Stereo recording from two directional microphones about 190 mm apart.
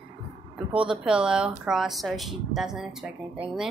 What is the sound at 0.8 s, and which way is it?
Speech, 5° right (ahead or behind).